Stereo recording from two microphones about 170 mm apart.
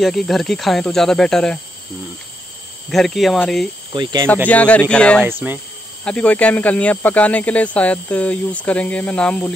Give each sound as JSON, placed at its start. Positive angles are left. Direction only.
{"t": 0.0, "sound": "speech", "side_deg": 0}
{"t": 2.9, "sound": "speech", "side_deg": 0}
{"t": 3.9, "sound": "speech", "side_deg": -25}
{"t": 4.5, "sound": "speech", "side_deg": 10}
{"t": 5.2, "sound": "speech", "side_deg": -10}
{"t": 6.0, "sound": "speech", "side_deg": 5}